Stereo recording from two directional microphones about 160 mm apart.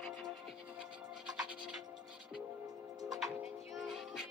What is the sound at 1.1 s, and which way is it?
Music, 5° right (ahead or behind).